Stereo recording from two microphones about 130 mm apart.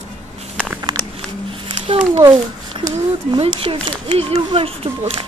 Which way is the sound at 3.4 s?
45° right (ahead or behind).